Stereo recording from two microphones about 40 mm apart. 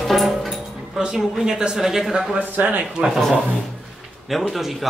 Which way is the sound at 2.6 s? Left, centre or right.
Right.